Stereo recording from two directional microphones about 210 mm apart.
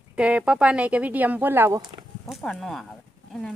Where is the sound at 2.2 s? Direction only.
5° left (ahead or behind).